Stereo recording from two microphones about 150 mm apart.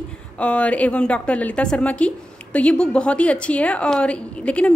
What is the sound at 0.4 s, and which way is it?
A woman's voice, 10° left (ahead or behind).